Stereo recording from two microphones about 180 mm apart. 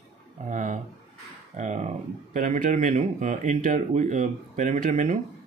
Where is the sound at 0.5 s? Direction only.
45° right (ahead or behind).